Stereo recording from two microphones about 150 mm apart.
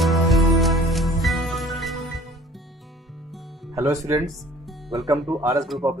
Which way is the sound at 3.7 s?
20° right (ahead or behind).